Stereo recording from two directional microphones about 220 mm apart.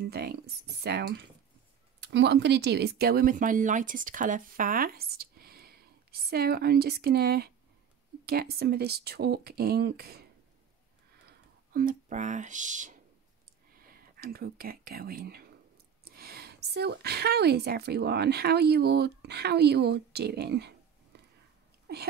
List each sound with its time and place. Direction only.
0.0 s a woman's voice: 45° right (ahead or behind)
11.2 s a woman's voice: 40° right (ahead or behind)
21.1 s a sound: 50° right (ahead or behind)